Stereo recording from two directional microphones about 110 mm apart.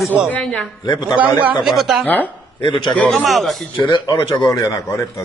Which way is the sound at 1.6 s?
5° right (ahead or behind).